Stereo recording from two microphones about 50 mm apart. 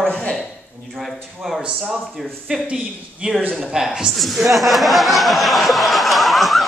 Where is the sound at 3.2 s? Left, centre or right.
Right.